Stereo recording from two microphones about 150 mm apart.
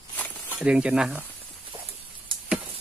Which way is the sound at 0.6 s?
5° right (ahead or behind).